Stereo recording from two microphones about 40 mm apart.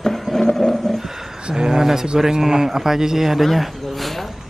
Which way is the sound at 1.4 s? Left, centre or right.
Centre.